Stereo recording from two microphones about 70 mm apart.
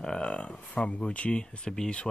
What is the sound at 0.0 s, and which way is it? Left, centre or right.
Speech, centre.